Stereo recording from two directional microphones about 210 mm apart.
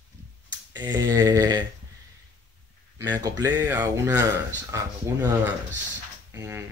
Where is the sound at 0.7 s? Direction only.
20° right (ahead or behind).